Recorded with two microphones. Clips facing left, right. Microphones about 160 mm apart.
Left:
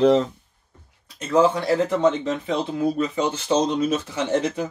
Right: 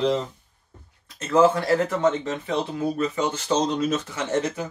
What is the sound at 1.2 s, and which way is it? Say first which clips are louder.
Speech: even; 15° left (ahead or behind).